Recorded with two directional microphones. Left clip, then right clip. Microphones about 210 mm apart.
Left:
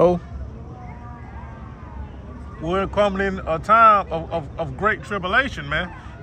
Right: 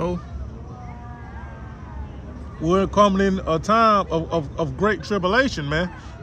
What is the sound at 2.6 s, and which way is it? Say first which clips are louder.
A man's voice: right 3 dB; 30° right (ahead or behind).